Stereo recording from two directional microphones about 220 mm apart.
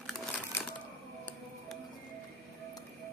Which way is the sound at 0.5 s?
10° left (ahead or behind).